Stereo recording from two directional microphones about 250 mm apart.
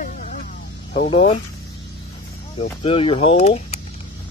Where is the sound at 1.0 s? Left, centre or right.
Left.